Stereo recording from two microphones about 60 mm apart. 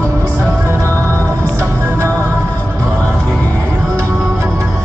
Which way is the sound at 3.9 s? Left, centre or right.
Right.